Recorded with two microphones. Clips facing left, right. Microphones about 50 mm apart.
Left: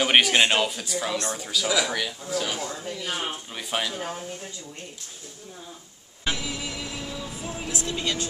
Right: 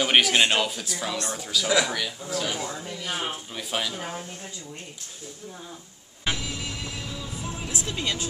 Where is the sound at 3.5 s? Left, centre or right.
Centre.